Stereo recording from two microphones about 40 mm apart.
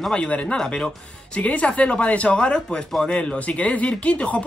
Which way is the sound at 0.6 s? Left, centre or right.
Left.